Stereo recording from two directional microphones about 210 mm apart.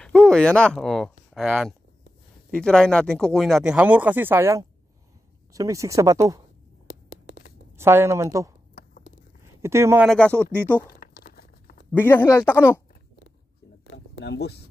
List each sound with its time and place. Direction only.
0.0 s speech: 5° left (ahead or behind); by 6.4 s 15° right (ahead or behind)
6.9 s a sound: 75° left (ahead or behind)
7.7 s speech: 10° right (ahead or behind)
10.0 s speech: 5° left (ahead or behind)
10.4 s speech: 10° right (ahead or behind)
11.0 s crumpling: 45° left (ahead or behind)
11.9 s speech: 10° left (ahead or behind)
13.8 s a sound: 60° left (ahead or behind)